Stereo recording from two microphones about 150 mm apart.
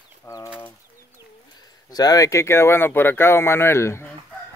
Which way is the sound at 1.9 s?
25° left (ahead or behind).